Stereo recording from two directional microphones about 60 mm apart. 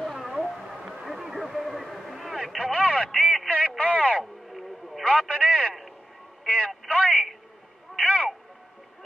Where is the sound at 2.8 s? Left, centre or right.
Centre.